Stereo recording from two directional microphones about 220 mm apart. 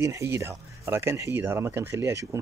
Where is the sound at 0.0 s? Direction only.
15° right (ahead or behind).